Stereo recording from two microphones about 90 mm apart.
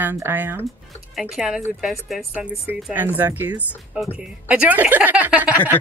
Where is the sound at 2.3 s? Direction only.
15° right (ahead or behind).